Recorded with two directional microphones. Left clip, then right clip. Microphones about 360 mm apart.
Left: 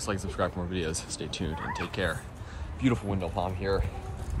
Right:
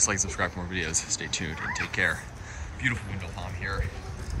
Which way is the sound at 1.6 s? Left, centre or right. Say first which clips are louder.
Right 3 dB; left.